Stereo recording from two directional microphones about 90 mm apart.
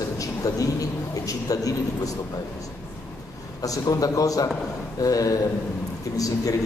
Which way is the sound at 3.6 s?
45° left (ahead or behind).